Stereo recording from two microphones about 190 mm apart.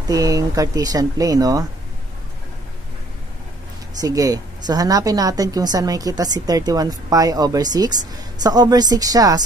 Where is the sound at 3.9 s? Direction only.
20° right (ahead or behind).